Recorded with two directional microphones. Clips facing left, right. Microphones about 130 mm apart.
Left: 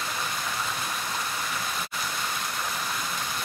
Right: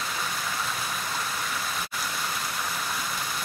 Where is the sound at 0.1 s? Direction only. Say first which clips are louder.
Even; centre (ahead or behind).